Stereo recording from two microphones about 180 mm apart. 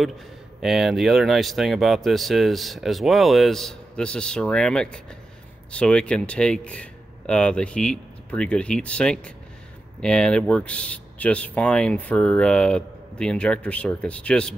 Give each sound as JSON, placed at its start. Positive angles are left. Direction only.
{"t": 0.6, "sound": "speech", "side_deg": 0}